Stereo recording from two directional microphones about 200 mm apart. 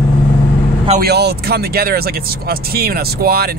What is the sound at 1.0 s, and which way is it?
Speech, 55° right (ahead or behind).